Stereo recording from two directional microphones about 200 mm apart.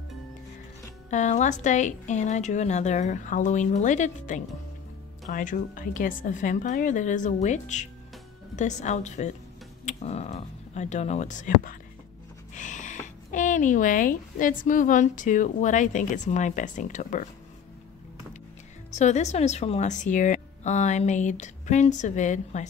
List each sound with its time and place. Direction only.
1.1 s speech: 35° left (ahead or behind)
18.9 s speech: 35° left (ahead or behind)